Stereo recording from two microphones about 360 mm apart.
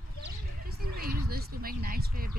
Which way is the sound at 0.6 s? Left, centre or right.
Right.